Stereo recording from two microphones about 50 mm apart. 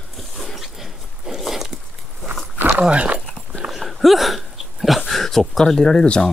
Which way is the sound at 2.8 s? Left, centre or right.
Right.